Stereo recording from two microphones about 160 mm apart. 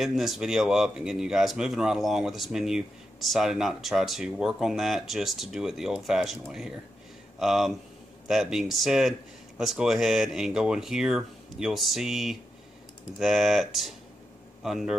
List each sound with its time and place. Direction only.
0.0 s speech: centre (ahead or behind)